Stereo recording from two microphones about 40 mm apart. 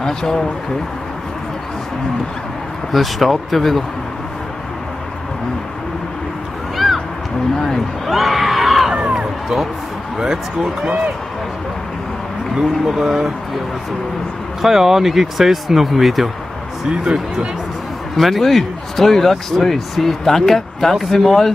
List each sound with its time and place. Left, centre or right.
0.0 s speech: centre
2.9 s speech: centre
8.1 s a sound: centre
10.1 s speech: centre
12.5 s speech: centre
14.6 s speech: centre
16.9 s speech: right
18.1 s speech: centre